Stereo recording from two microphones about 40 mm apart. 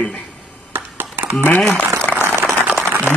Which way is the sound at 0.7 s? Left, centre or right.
Right.